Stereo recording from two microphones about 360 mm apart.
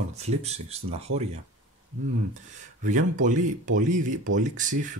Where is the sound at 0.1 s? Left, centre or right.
Centre.